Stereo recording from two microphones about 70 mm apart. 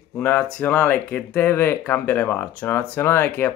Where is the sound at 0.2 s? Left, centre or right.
Left.